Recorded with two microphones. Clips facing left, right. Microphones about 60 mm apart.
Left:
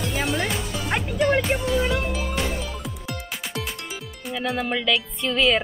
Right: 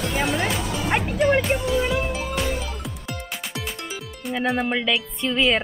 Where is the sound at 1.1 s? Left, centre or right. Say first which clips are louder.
Even; centre.